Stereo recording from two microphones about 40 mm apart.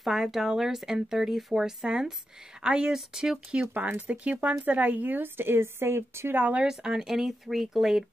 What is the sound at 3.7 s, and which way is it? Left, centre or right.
Speech, right.